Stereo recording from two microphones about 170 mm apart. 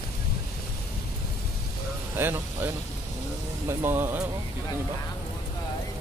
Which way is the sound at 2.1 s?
10° right (ahead or behind).